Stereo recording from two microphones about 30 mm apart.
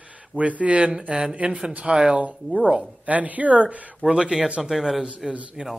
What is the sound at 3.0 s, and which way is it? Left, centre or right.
Speech, right.